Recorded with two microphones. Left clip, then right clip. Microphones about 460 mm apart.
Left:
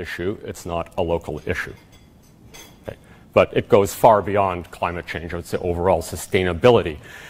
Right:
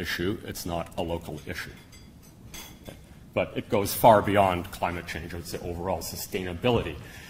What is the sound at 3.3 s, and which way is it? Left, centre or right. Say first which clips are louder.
Speech: left 12 dB; left.